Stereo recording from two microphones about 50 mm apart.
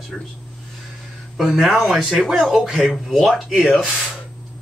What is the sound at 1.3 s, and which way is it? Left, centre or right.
Speech, centre.